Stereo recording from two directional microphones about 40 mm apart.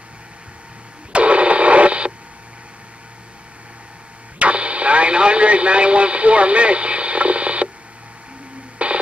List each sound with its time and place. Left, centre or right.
1.1 s radio: right
4.4 s radio: right
8.7 s radio: right